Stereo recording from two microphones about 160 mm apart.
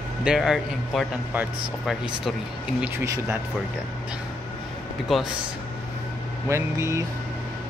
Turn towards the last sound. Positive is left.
turn(degrees=-15)  # may be behind; listen again after turning